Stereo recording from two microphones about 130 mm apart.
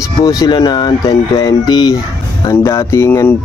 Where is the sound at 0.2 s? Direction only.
30° left (ahead or behind).